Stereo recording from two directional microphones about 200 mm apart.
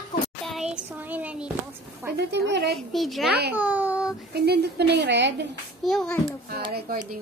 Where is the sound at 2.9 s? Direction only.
Centre (ahead or behind).